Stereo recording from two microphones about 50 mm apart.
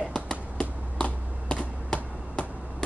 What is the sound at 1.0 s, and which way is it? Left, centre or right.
Finger snapping, centre.